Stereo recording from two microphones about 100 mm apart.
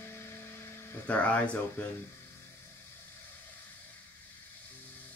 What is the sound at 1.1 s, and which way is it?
Speech, 15° left (ahead or behind).